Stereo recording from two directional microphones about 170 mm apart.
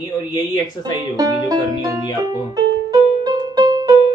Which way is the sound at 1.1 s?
20° right (ahead or behind).